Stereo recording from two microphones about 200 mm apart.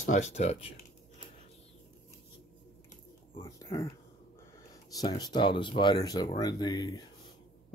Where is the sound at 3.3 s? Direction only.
20° left (ahead or behind).